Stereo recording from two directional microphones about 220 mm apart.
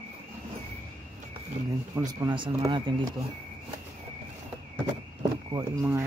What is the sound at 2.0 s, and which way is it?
Speech, 15° right (ahead or behind).